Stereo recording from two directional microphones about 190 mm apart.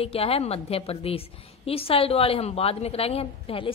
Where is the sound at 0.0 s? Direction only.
30° left (ahead or behind).